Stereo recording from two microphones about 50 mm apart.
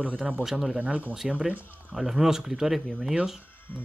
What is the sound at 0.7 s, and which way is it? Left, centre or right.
Speech, right.